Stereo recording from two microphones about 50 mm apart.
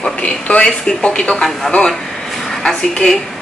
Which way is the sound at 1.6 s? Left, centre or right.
Centre.